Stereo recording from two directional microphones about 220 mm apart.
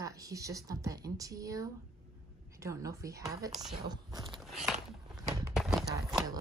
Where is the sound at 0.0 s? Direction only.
15° right (ahead or behind).